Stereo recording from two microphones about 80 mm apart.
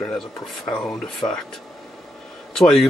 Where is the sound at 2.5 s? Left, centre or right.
Centre.